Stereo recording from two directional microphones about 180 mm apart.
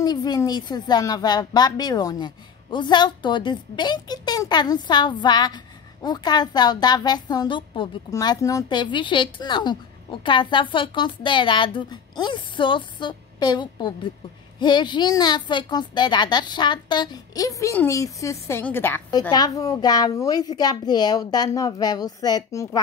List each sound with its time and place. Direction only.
0.0 s a woman's voice: 20° left (ahead or behind)